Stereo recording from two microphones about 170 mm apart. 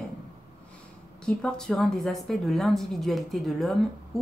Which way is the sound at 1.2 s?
5° left (ahead or behind).